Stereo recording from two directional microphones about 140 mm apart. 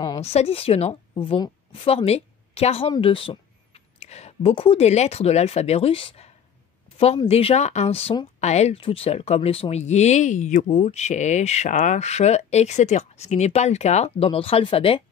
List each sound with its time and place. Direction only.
0.2 s a woman's voice: 45° left (ahead or behind)